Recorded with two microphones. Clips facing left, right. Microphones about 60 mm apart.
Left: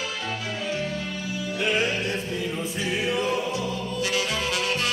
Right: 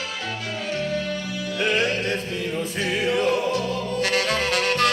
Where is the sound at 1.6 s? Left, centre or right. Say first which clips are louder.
Right 2 dB; right.